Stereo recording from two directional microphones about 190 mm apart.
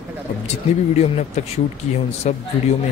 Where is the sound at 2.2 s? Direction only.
35° left (ahead or behind).